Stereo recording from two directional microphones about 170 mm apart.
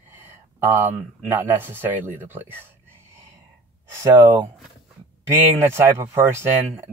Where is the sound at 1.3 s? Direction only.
10° right (ahead or behind).